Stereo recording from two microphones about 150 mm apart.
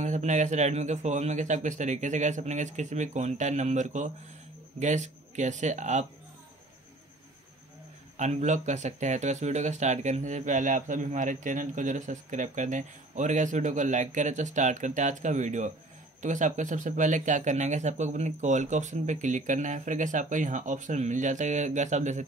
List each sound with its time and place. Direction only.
0.0 s speech: 50° right (ahead or behind)
8.2 s speech: 50° right (ahead or behind)